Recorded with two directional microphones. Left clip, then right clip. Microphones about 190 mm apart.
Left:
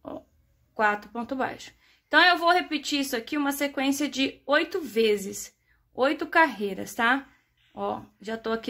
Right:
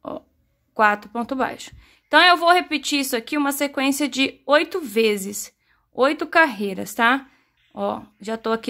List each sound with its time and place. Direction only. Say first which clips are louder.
0.7 s a woman's voice: right 7 dB; 30° right (ahead or behind)